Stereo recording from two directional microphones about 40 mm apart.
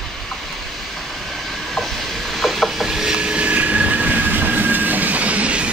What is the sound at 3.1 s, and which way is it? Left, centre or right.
Train, right.